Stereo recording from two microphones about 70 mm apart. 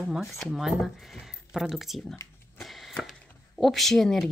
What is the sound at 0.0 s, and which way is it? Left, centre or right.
A woman's voice, centre.